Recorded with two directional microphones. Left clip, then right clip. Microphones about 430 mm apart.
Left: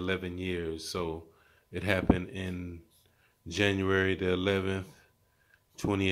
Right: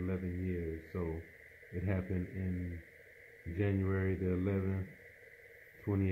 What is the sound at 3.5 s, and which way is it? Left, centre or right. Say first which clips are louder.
Speech: left 10 dB; left.